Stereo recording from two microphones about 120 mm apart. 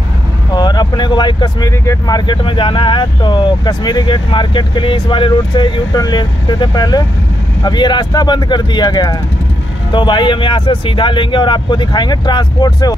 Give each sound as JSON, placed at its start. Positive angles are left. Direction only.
{"t": 0.6, "sound": "vehicle", "side_deg": 35}
{"t": 1.9, "sound": "speech", "side_deg": 35}